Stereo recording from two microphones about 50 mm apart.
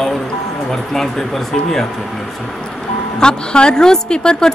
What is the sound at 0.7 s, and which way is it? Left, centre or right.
A woman's voice, centre.